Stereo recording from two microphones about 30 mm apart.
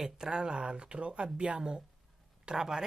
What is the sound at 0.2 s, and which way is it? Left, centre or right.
Speech, right.